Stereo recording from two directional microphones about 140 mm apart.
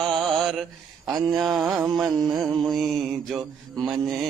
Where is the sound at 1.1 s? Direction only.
25° right (ahead or behind).